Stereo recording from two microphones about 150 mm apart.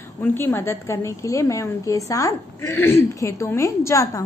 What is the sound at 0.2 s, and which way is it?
A woman's voice, 15° left (ahead or behind).